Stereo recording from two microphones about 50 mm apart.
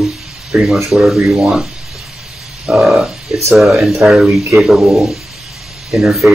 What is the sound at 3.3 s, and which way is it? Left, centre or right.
Speech, centre.